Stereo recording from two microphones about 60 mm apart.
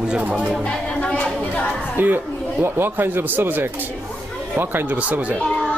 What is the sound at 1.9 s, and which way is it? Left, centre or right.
A woman's voice, right.